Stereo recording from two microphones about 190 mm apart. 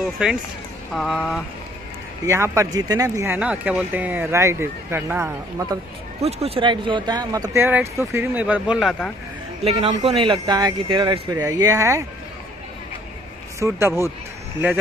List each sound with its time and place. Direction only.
0.0 s speech: 5° right (ahead or behind)
2.2 s speech: 15° right (ahead or behind)
6.2 s speech: 30° right (ahead or behind); by 9.1 s centre (ahead or behind)
9.7 s speech: 35° right (ahead or behind); by 12.0 s 15° right (ahead or behind)
13.6 s speech: 15° right (ahead or behind)